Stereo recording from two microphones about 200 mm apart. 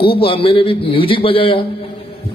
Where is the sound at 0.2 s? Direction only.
25° left (ahead or behind).